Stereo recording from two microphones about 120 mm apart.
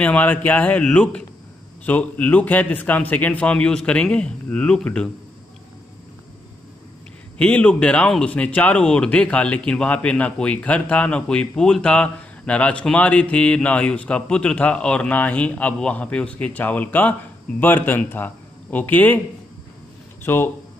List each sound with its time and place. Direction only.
0.0 s speech: 15° left (ahead or behind)
7.3 s speech: 10° left (ahead or behind)
20.2 s speech: 20° left (ahead or behind)